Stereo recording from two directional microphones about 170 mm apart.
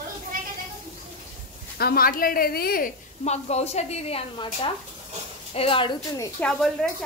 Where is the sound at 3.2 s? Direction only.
40° left (ahead or behind).